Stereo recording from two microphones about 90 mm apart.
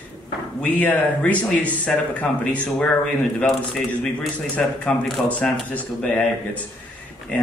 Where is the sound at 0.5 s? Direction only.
20° left (ahead or behind).